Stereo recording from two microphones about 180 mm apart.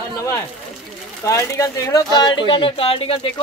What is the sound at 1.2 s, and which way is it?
A man's voice, 15° left (ahead or behind).